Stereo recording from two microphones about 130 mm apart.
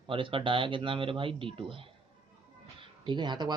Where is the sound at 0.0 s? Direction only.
40° right (ahead or behind).